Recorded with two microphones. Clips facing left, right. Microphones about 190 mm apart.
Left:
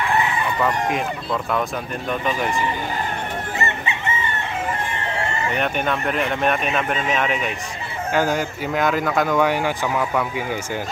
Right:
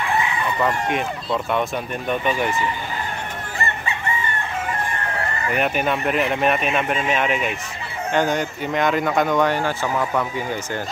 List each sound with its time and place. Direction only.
0.6 s speech: 5° right (ahead or behind)
3.5 s chicken: 20° left (ahead or behind)
5.5 s speech: 5° right (ahead or behind)